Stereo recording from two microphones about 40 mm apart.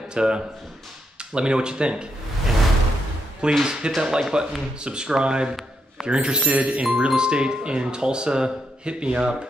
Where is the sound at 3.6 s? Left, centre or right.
Right.